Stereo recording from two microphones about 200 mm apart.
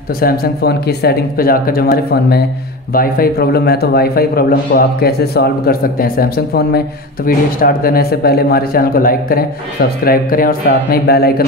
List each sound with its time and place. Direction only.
0.2 s speech: 50° left (ahead or behind)